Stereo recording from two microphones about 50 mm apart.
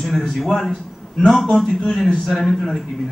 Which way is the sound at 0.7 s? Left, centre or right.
Centre.